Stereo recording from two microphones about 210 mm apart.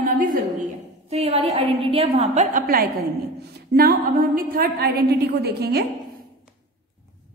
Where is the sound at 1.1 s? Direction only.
30° right (ahead or behind); by 5.8 s 50° right (ahead or behind).